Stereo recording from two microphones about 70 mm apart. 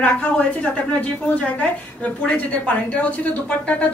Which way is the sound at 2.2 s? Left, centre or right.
Centre.